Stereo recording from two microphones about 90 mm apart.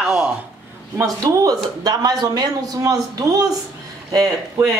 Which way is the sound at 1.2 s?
45° right (ahead or behind).